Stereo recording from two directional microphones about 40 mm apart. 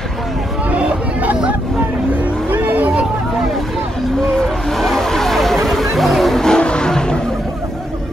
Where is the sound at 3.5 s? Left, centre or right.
Centre.